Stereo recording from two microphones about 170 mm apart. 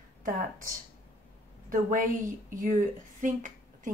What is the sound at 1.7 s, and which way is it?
A woman's voice, 50° right (ahead or behind).